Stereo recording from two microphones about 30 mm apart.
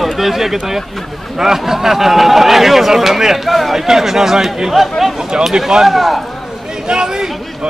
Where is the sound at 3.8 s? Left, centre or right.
Centre.